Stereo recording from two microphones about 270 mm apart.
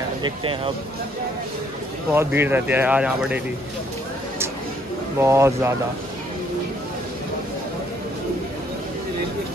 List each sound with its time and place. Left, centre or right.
0.2 s speech: centre
2.0 s speech: centre
5.2 s speech: centre